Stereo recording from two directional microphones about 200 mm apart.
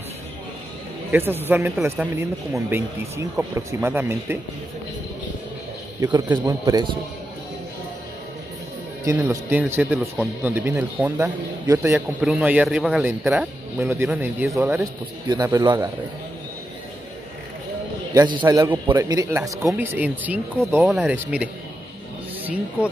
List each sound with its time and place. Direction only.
1.1 s speech: 10° right (ahead or behind)
5.9 s a man's voice: 15° right (ahead or behind)
9.0 s speech: 15° right (ahead or behind)
12.2 s a man's voice: centre (ahead or behind); by 15.9 s 20° right (ahead or behind)
18.1 s speech: 20° right (ahead or behind)